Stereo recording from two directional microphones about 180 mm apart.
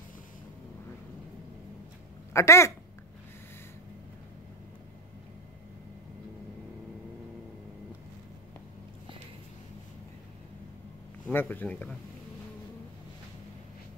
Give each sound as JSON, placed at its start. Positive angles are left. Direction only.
{"t": 2.3, "sound": "speech", "side_deg": 15}
{"t": 11.3, "sound": "speech", "side_deg": 10}